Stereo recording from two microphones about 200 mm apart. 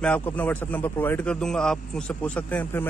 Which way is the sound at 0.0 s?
10° left (ahead or behind).